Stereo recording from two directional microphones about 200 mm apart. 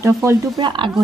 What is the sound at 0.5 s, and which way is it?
Speech, 25° right (ahead or behind).